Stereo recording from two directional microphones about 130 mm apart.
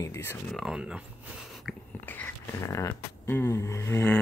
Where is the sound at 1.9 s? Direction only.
15° left (ahead or behind).